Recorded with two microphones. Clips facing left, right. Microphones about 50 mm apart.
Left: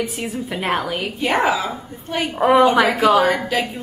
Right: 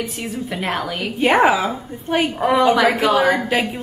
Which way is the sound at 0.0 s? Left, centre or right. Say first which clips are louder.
Left 1 dB; centre.